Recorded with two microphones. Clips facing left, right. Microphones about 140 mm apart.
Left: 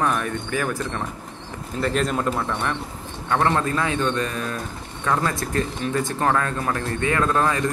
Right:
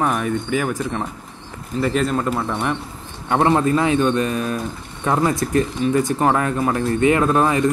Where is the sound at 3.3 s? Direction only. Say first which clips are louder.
Right 5 dB; 20° right (ahead or behind).